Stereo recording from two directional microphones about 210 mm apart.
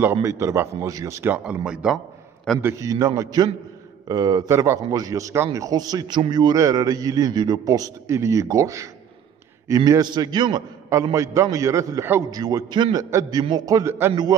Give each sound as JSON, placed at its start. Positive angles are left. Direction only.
{"t": 0.0, "sound": "a man's voice", "side_deg": -10}
{"t": 2.6, "sound": "a man's voice", "side_deg": -15}